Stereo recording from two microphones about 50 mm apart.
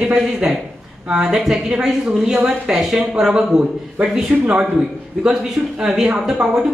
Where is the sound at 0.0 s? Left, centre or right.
Centre.